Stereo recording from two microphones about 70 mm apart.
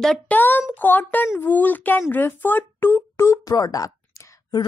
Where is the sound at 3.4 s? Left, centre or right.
Left.